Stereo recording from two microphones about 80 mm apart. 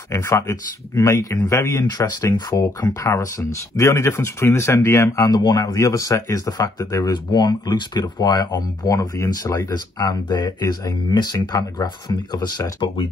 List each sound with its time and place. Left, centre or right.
0.1 s speech: left
1.9 s speech: left
2.8 s speech: left
7.1 s speech: left